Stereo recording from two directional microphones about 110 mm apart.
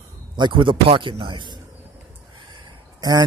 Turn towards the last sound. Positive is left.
turn(degrees=-35)  # may be behind; listen again after turning